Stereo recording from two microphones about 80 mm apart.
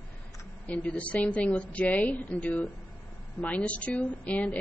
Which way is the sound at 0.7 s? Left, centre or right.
Centre.